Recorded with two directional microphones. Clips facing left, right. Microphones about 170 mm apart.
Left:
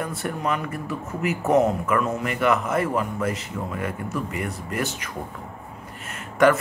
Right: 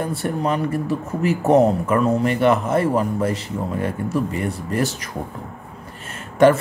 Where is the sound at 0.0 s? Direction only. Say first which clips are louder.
Right 5 dB; 30° right (ahead or behind).